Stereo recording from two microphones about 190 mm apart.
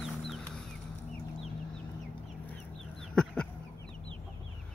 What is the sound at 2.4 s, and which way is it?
Chicken, 5° left (ahead or behind).